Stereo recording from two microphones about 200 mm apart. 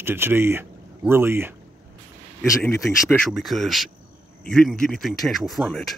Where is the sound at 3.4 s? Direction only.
Centre (ahead or behind).